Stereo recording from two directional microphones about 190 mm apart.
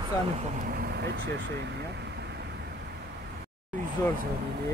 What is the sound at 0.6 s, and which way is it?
Speech, 55° right (ahead or behind).